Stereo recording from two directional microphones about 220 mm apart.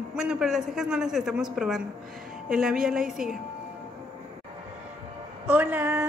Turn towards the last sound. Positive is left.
turn(degrees=-5)  # may be behind; listen again after turning